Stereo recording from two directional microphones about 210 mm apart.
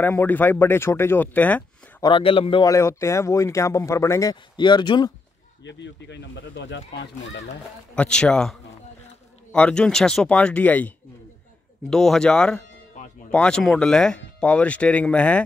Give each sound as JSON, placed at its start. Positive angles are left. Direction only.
{"t": 0.0, "sound": "speech", "side_deg": 10}
{"t": 2.0, "sound": "speech", "side_deg": 25}
{"t": 5.6, "sound": "speech", "side_deg": 60}
{"t": 7.9, "sound": "speech", "side_deg": 5}
{"t": 11.9, "sound": "speech", "side_deg": 0}